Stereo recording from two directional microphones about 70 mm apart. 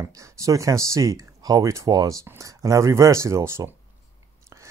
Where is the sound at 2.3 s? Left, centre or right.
Right.